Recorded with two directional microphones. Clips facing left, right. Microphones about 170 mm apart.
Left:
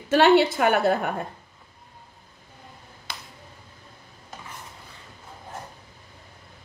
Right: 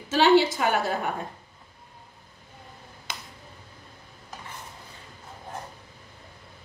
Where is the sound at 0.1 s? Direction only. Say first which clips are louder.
Left 2 dB; 60° left (ahead or behind).